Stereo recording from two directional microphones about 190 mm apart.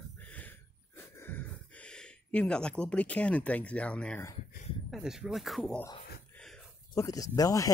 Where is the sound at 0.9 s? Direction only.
10° left (ahead or behind).